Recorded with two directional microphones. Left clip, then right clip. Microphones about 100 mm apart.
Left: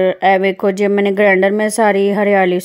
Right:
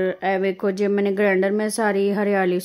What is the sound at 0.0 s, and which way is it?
Speech, 50° left (ahead or behind).